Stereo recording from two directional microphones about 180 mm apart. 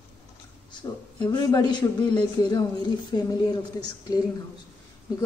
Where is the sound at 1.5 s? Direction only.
20° left (ahead or behind).